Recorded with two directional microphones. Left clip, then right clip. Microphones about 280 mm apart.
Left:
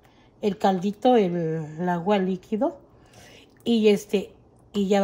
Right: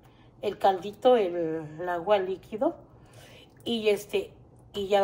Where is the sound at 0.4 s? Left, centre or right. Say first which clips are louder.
Left 2 dB; left.